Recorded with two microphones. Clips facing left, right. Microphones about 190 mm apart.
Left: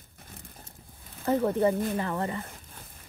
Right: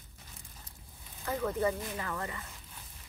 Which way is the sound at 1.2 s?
35° left (ahead or behind).